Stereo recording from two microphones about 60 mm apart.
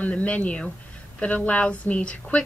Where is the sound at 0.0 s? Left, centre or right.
Left.